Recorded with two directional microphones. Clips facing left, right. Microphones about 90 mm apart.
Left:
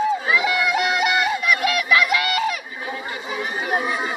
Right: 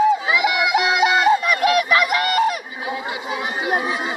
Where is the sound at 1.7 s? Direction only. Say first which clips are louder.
Right 2 dB; 40° right (ahead or behind).